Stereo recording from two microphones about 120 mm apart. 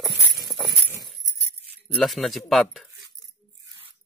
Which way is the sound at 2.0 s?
Centre (ahead or behind).